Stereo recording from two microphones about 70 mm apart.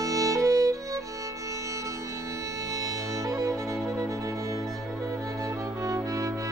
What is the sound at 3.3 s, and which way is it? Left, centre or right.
Music, right.